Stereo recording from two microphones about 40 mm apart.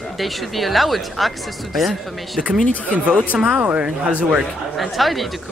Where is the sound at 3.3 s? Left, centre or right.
Centre.